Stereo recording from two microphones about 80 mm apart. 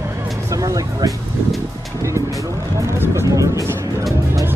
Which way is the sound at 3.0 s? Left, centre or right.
Right.